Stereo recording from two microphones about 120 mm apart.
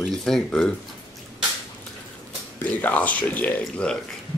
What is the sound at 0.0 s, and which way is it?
Speech, 5° left (ahead or behind).